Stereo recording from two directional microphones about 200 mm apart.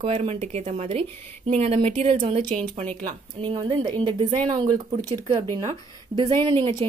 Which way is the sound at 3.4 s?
25° right (ahead or behind).